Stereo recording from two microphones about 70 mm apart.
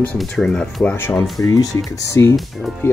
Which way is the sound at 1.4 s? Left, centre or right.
Left.